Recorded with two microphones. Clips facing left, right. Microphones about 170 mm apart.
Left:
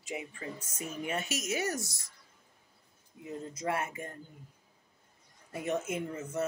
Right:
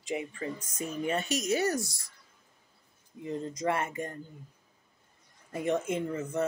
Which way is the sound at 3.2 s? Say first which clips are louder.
Right 5 dB; 5° left (ahead or behind).